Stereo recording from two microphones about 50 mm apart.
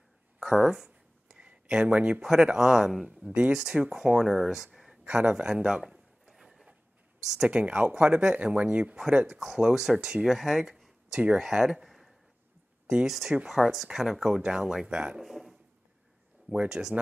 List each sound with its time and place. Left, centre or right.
0.4 s a sound: centre
1.4 s speech: centre
2.2 s speech: centre
5.0 s speech: right
5.5 s a sound: centre
7.4 s speech: right
9.6 s speech: centre
15.1 s a sound: centre
16.4 s speech: centre